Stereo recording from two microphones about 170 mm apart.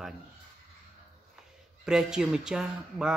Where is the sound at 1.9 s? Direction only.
5° right (ahead or behind).